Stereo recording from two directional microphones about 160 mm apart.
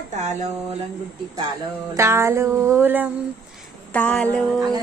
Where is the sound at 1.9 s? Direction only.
15° right (ahead or behind).